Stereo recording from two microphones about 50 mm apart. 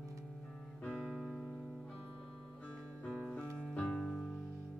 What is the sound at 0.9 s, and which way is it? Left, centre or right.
Music, centre.